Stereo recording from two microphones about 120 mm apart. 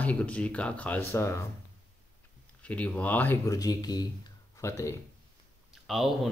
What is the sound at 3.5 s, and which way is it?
Speech, 30° left (ahead or behind).